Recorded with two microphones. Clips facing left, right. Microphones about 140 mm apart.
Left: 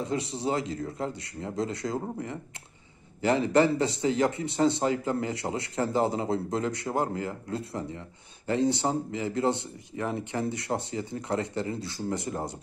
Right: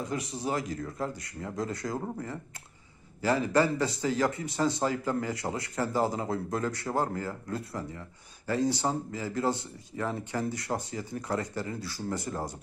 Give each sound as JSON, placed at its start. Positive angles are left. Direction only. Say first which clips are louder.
{"t": 0.0, "sound": "speech", "louder": "left 3 dB", "side_deg": 25}
{"t": 3.2, "sound": "speech", "louder": "left 3 dB", "side_deg": 25}